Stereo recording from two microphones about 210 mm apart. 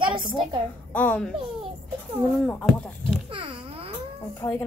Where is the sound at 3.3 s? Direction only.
25° right (ahead or behind).